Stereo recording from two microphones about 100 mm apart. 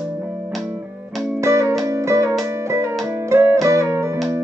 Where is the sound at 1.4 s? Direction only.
30° right (ahead or behind).